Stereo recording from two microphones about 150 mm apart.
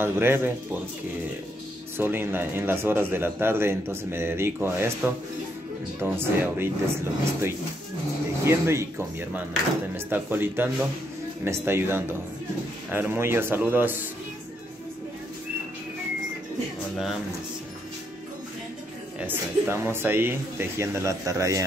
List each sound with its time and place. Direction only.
0.0 s a man's voice: 15° right (ahead or behind)
2.0 s a man's voice: 15° right (ahead or behind)
19.1 s a man's voice: 15° right (ahead or behind)